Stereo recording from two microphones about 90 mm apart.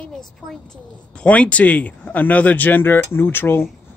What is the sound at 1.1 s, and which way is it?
Speech, 15° left (ahead or behind).